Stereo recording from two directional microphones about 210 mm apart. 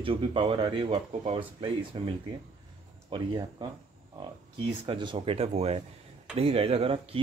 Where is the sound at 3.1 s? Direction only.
20° right (ahead or behind).